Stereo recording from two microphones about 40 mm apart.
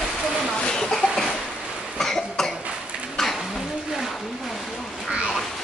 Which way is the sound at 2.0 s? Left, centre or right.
Centre.